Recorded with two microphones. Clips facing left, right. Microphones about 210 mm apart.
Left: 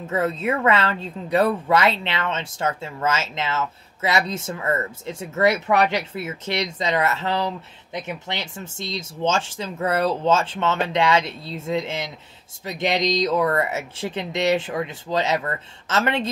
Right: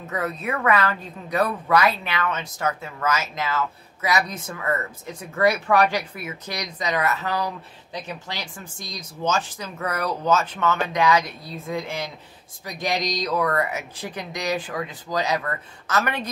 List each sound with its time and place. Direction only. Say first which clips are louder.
0.0 s a woman's voice: left 5 dB; 25° left (ahead or behind)